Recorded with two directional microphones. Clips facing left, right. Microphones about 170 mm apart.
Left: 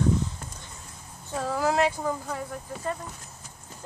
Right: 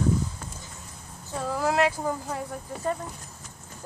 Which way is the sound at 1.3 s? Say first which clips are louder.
Even; centre (ahead or behind).